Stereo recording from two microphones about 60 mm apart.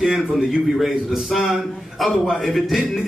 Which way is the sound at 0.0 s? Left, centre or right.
Centre.